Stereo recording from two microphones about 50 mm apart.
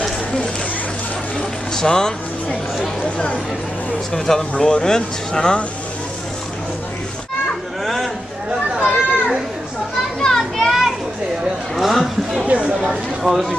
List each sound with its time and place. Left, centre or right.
1.8 s speech: centre
4.1 s speech: centre
7.8 s a sound: centre
8.7 s children playing: centre
10.2 s children playing: centre
11.7 s a sound: centre
12.4 s speech: right
12.8 s speech: centre